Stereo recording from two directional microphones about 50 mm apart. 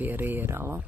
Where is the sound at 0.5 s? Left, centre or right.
Right.